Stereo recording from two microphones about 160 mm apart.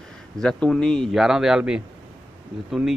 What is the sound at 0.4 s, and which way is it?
Speech, 5° left (ahead or behind).